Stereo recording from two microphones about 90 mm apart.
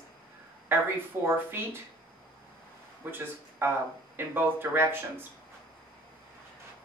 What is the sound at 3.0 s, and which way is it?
A woman's voice, 20° right (ahead or behind).